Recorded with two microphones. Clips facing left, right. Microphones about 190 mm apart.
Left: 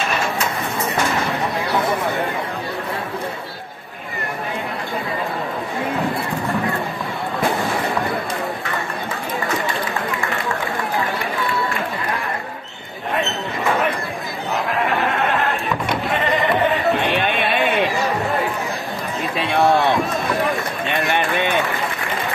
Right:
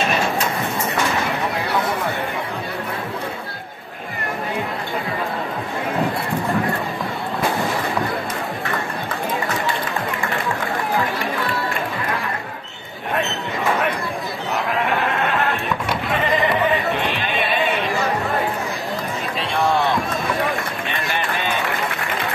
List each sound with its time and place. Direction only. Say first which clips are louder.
19.4 s run: left 3 dB; 60° left (ahead or behind)